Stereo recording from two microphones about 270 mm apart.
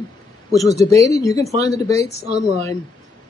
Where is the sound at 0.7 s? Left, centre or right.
Centre.